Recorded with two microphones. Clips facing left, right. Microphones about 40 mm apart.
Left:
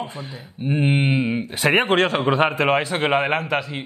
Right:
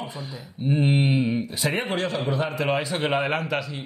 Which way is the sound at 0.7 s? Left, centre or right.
Left.